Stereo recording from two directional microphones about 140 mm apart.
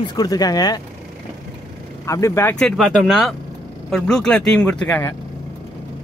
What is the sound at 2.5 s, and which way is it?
Speech, 5° left (ahead or behind).